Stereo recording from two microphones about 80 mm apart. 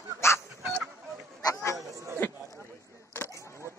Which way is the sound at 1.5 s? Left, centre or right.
Left.